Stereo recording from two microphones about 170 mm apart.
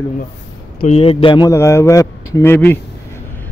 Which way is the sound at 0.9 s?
35° left (ahead or behind).